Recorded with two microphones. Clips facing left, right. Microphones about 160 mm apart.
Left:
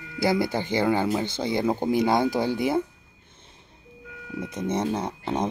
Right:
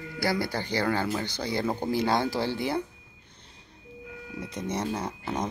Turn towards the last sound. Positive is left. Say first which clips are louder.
# left 4 dB
turn(degrees=25)  # may be behind; listen again after turning